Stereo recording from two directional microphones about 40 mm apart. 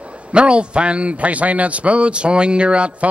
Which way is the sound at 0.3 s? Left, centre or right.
Right.